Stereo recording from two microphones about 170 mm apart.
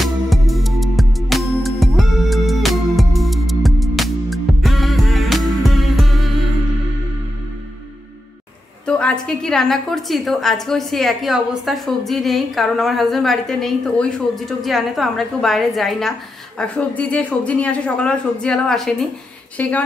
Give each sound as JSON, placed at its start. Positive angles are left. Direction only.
{"t": 0.0, "sound": "music", "side_deg": 0}
{"t": 8.8, "sound": "a woman's voice", "side_deg": 5}